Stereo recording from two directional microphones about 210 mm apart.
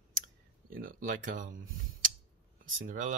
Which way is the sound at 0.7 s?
40° right (ahead or behind).